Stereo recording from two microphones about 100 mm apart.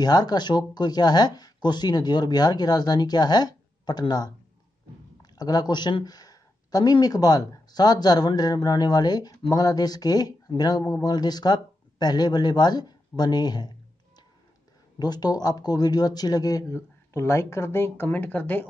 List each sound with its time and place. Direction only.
0.0 s speech: 45° left (ahead or behind)
5.2 s speech: 40° left (ahead or behind); by 18.7 s 15° left (ahead or behind)